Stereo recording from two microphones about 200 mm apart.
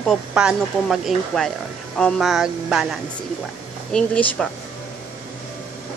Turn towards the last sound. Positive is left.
turn(degrees=5)  # may be behind; listen again after turning